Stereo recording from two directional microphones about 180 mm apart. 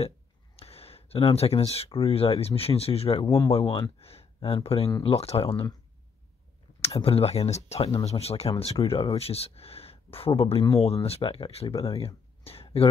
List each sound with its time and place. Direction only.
0.6 s speech: 35° left (ahead or behind)
4.0 s a sound: 35° left (ahead or behind)
4.6 s speech: 30° left (ahead or behind)
6.8 s speech: 30° left (ahead or behind)